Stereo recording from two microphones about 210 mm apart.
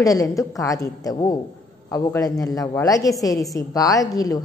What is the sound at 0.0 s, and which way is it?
A woman's voice, 15° left (ahead or behind).